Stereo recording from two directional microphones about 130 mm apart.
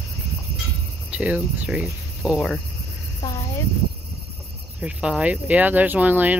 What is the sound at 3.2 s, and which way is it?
Cricket, 30° left (ahead or behind).